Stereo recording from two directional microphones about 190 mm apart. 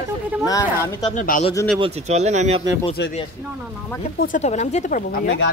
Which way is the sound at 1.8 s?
35° right (ahead or behind).